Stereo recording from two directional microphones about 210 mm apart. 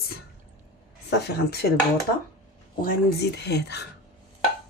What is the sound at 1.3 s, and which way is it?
Speech, 50° left (ahead or behind).